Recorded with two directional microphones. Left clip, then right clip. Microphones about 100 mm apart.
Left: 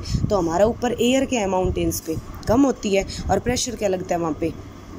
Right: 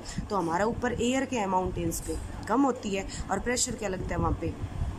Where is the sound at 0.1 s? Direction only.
25° left (ahead or behind).